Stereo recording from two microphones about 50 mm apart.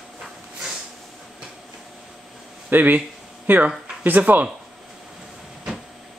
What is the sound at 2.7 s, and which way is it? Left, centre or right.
Speech, right.